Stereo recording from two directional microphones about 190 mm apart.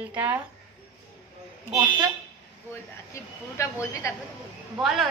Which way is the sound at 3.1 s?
15° left (ahead or behind).